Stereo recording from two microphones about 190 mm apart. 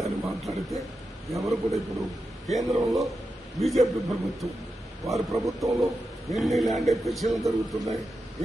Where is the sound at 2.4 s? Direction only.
Centre (ahead or behind).